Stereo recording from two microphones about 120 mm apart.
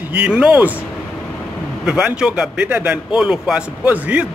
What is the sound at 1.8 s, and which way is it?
A man's voice, 5° right (ahead or behind).